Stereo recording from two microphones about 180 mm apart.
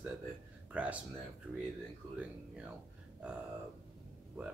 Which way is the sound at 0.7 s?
10° right (ahead or behind).